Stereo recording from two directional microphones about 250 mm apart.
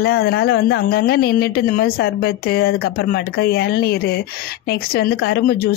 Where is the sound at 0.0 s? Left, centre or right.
Left.